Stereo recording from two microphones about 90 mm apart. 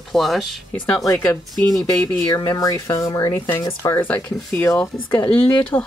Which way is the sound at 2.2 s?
35° left (ahead or behind).